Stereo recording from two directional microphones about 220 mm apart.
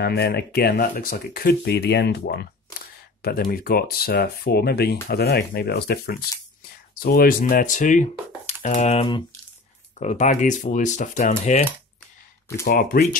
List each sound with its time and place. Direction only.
0.0 s speech: 45° left (ahead or behind)
12.6 s speech: 40° left (ahead or behind)